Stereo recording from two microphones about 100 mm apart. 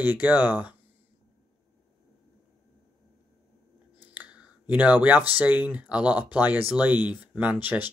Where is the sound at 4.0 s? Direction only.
15° right (ahead or behind).